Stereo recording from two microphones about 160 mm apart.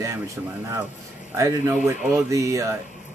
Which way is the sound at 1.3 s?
20° right (ahead or behind).